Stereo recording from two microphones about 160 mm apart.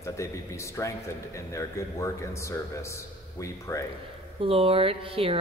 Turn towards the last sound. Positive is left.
turn(degrees=-35)  # may be behind; listen again after turning